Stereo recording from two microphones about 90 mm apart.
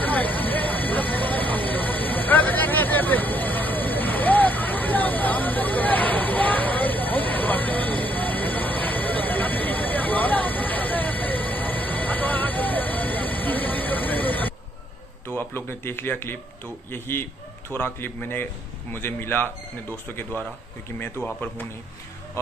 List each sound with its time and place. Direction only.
0.0 s vehicle: 20° left (ahead or behind)
7.2 s vehicle: 70° right (ahead or behind)
7.4 s train: 15° left (ahead or behind)
11.9 s vehicle: 15° left (ahead or behind)
13.6 s a sound: 20° left (ahead or behind)
16.9 s a man's voice: 25° left (ahead or behind)
21.0 s a man's voice: 20° left (ahead or behind)